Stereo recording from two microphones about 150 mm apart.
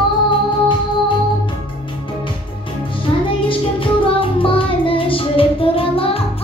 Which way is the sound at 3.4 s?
35° left (ahead or behind).